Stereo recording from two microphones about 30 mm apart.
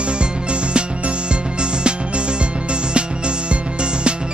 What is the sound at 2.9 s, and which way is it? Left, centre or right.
Music, right.